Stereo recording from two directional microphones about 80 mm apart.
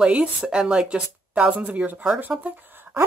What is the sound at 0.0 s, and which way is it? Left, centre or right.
Speech, centre.